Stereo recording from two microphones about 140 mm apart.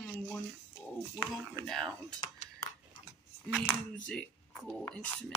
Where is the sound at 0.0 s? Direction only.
10° left (ahead or behind).